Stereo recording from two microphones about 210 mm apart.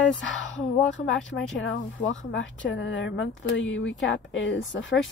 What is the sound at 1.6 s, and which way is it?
Speech, 65° left (ahead or behind).